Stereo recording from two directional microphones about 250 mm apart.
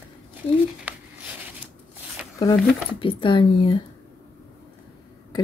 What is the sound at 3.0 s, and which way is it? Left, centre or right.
Speech, centre.